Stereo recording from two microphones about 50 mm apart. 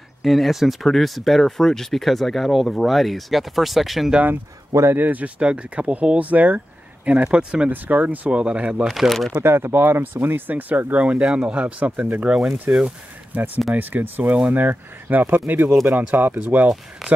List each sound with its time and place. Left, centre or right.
0.2 s speech: centre
4.9 s speech: right
5.4 s speech: right
7.7 s speech: right
8.3 s speech: centre
8.8 s speech: centre
9.4 s speech: right
12.7 s speech: right
13.7 s speech: right